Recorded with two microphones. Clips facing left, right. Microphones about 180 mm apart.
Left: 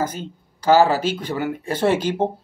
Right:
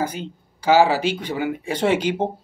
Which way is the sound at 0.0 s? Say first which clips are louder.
Even; 45° left (ahead or behind).